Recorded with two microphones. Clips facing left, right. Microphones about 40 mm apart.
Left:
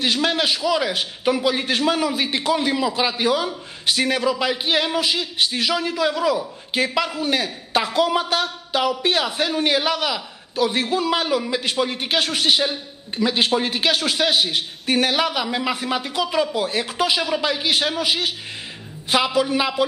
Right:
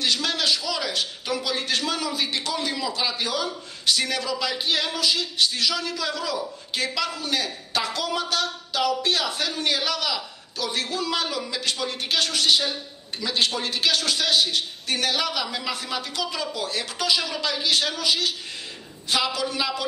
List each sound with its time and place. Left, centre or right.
0.0 s a man's voice: left